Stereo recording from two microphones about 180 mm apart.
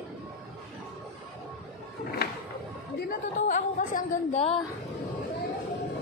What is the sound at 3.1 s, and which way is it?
A woman's voice, 45° left (ahead or behind).